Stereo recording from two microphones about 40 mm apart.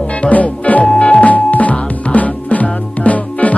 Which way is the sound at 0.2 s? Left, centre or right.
Left.